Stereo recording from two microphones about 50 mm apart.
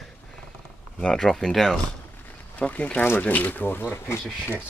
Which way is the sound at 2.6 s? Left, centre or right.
Left.